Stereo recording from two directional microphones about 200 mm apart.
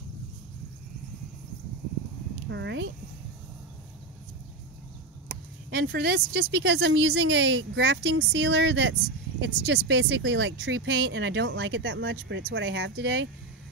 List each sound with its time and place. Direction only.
2.5 s speech: 60° right (ahead or behind)
5.9 s speech: 55° right (ahead or behind)